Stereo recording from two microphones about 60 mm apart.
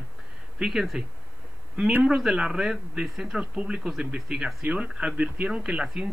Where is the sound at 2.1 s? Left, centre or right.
Centre.